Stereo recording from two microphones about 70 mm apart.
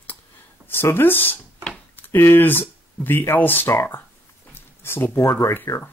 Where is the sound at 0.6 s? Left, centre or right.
Left.